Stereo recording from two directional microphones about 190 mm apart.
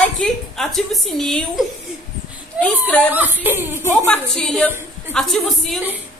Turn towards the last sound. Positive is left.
turn(degrees=0)  # may be behind; listen again after turning